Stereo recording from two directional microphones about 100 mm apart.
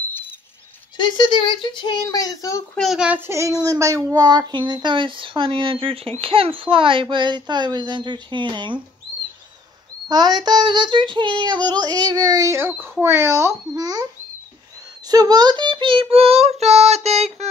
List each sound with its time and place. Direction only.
0.9 s speech: 50° left (ahead or behind)
2.0 s speech: 35° left (ahead or behind)
2.8 s a child's voice: centre (ahead or behind)
3.3 s a child's voice: 30° right (ahead or behind); by 8.7 s 50° right (ahead or behind)
10.0 s child singing: 45° right (ahead or behind)
12.4 s a child's voice: 25° right (ahead or behind)
13.7 s speech: 40° right (ahead or behind)
15.0 s child singing: 40° right (ahead or behind); by 17.5 s 90° right